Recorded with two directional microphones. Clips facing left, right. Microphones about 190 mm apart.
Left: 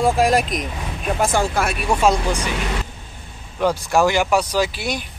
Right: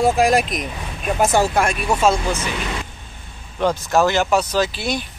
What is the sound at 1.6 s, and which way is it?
Speech, 5° left (ahead or behind).